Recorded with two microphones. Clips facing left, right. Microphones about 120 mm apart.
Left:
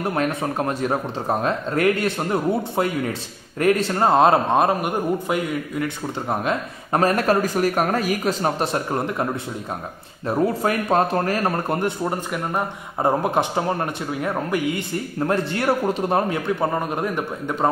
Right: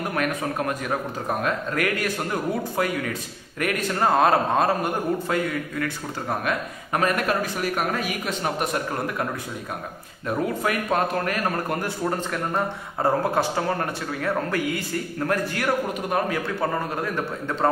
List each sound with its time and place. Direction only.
0.0 s speech: 30° left (ahead or behind)
6.4 s a man's voice: 35° left (ahead or behind); by 17.6 s 15° left (ahead or behind)